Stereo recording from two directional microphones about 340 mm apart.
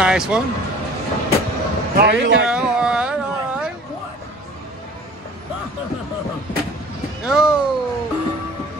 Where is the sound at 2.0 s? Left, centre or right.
Right.